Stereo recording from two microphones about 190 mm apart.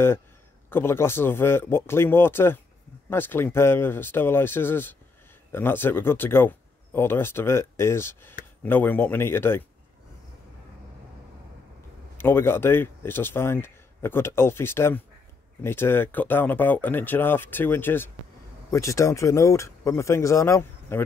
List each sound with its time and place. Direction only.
0.7 s speech: 10° left (ahead or behind)
12.2 s speech: 10° left (ahead or behind)